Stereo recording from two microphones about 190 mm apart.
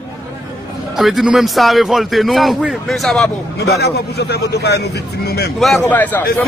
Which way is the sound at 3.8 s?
60° left (ahead or behind).